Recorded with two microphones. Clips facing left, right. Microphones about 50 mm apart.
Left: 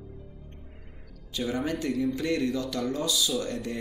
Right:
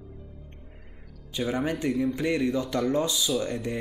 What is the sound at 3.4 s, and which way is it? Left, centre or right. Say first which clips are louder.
Speech: right 2 dB; centre.